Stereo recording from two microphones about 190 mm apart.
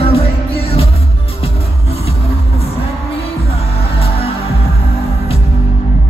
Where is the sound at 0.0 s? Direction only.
30° left (ahead or behind).